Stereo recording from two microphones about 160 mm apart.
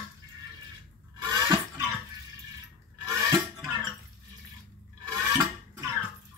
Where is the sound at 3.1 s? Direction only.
20° right (ahead or behind).